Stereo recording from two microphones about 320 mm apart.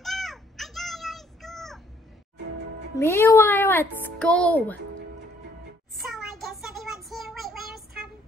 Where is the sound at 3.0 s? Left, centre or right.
Centre.